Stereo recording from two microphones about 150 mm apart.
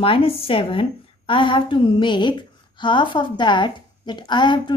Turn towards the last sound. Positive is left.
turn(degrees=30)  # may be behind; listen again after turning